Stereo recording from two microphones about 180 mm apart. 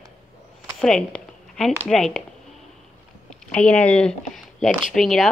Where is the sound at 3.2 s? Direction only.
5° left (ahead or behind).